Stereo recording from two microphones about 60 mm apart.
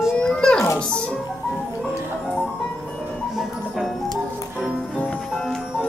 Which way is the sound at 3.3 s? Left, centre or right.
Centre.